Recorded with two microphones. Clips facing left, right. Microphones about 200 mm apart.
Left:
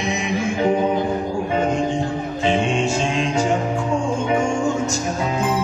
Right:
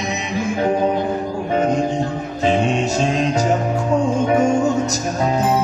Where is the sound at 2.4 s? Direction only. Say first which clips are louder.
Right 2 dB; 40° right (ahead or behind).